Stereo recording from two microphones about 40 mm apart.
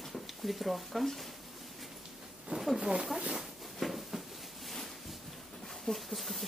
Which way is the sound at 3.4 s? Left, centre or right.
Centre.